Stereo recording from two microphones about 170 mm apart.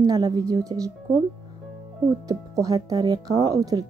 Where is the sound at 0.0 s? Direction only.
25° right (ahead or behind).